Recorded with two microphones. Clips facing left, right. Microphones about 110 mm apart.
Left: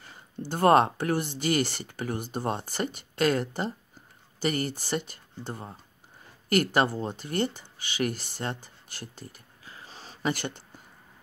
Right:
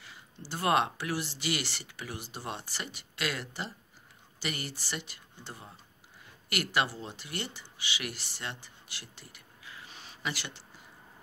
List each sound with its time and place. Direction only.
0.0 s speech: 45° left (ahead or behind)